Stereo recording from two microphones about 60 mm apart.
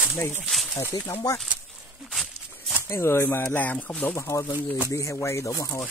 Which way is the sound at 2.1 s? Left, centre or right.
Centre.